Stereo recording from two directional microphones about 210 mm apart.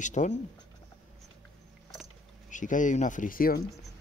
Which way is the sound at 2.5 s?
35° left (ahead or behind).